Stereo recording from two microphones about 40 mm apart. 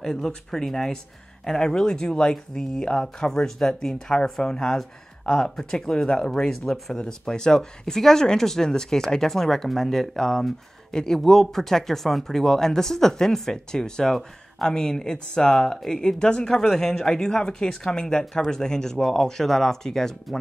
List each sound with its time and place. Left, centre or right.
0.0 s speech: centre